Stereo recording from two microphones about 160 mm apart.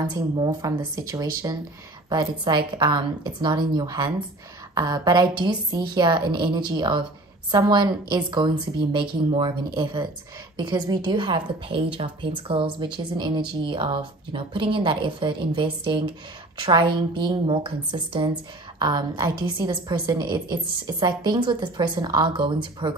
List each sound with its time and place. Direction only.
0.1 s a woman's voice: 25° right (ahead or behind)